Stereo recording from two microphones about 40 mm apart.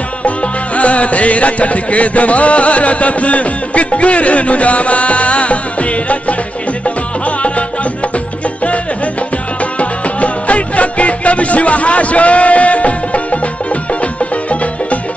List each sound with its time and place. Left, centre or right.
0.7 s music: left
9.8 s music: left